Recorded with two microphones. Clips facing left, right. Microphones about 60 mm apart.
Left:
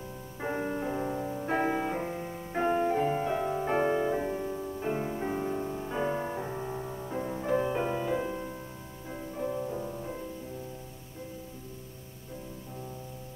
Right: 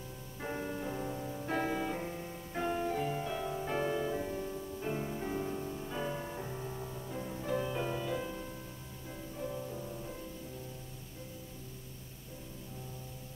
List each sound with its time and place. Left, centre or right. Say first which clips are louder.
0.4 s music: left 6 dB; left